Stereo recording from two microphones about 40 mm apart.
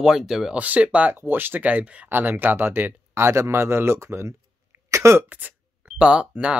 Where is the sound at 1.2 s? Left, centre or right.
Right.